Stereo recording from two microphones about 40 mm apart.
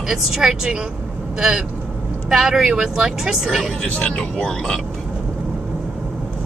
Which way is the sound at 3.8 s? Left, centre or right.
Left.